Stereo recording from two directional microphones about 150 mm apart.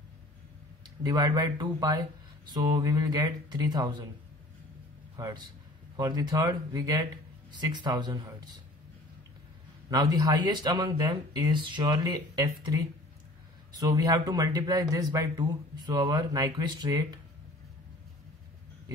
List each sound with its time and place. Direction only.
0.8 s speech: 30° right (ahead or behind)
5.1 s a man's voice: 25° right (ahead or behind)
9.8 s speech: 25° right (ahead or behind)